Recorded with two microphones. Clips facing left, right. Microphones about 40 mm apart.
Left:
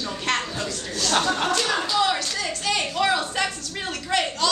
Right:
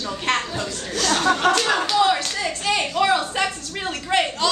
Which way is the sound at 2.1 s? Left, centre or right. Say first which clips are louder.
Right 2 dB; centre.